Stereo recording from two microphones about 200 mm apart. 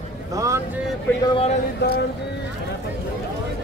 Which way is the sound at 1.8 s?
55° left (ahead or behind).